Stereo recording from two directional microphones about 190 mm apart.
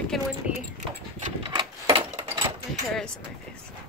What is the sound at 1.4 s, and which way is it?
Typewriter, 25° right (ahead or behind).